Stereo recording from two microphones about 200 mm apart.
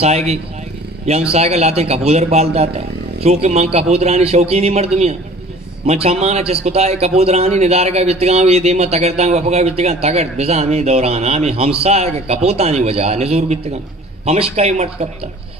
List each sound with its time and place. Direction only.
0.0 s speech: 30° right (ahead or behind)